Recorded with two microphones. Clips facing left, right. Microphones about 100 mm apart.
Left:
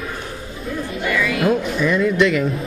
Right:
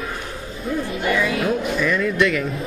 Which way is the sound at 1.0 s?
35° right (ahead or behind).